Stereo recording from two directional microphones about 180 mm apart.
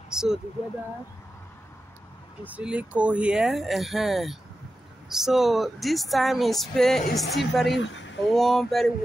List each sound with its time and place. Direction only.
0.1 s speech: 5° right (ahead or behind)
2.4 s speech: 5° right (ahead or behind)
7.7 s a woman's voice: 90° left
8.3 s speech: centre (ahead or behind)